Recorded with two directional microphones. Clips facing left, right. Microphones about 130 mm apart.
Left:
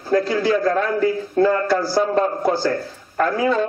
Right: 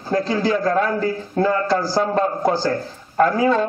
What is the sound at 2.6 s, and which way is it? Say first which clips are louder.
Speech: even; 35° right (ahead or behind).